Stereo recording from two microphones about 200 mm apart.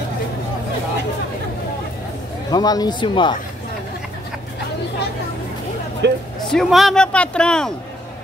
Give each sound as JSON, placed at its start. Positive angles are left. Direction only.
{"t": 2.5, "sound": "speech", "side_deg": 20}
{"t": 6.0, "sound": "speech", "side_deg": -60}
{"t": 6.5, "sound": "a man's voice", "side_deg": 0}